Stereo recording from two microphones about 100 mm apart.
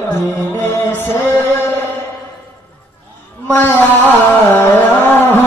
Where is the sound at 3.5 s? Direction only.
20° left (ahead or behind).